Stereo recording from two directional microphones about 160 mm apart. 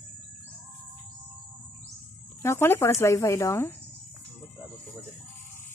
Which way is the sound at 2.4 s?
15° left (ahead or behind).